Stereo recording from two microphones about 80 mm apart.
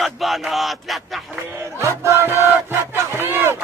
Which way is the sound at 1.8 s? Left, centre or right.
Right.